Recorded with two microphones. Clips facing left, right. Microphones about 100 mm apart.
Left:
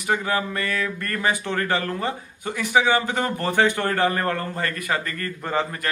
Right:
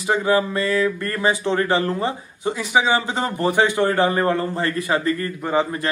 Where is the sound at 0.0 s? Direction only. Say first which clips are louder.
Right 5 dB; 20° right (ahead or behind).